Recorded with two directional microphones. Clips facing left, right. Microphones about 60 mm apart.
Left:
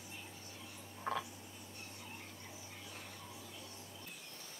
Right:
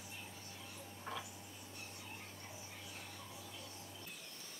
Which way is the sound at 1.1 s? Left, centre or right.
Left.